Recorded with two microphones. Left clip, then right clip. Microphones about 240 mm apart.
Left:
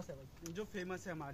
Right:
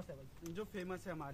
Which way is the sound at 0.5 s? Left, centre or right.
Centre.